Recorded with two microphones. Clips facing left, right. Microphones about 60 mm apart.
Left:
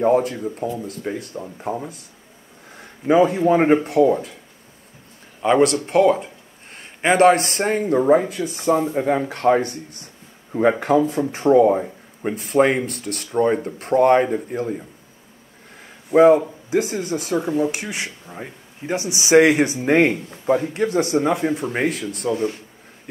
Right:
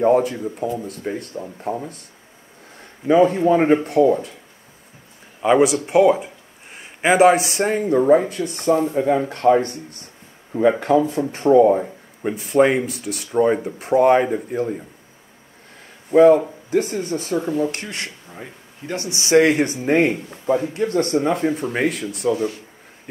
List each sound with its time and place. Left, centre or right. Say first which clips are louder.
0.0 s speech: right 1 dB; centre
3.4 s speech: even; centre
3.7 s speech: even; centre
5.4 s speech: right 1 dB; centre
16.1 s speech: right 1 dB; centre
17.1 s speech: left 1 dB; left
19.9 s speech: left 1 dB; left
20.9 s speech: even; centre